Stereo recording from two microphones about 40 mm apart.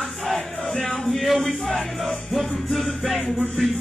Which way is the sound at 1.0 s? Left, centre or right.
Centre.